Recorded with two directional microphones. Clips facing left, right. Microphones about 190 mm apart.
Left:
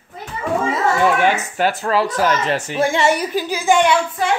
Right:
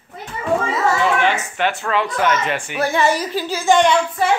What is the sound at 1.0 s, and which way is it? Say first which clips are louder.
Speech: left 2 dB; 45° left (ahead or behind).